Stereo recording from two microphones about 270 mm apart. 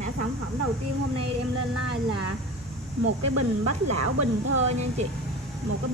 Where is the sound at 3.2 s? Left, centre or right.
Right.